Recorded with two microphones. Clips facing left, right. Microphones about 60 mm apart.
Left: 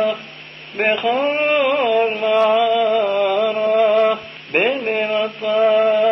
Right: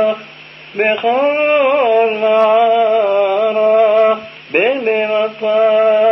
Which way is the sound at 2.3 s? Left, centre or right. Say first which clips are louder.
Right 4 dB; right.